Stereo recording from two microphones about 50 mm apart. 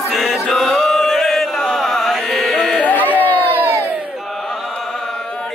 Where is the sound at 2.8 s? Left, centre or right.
Left.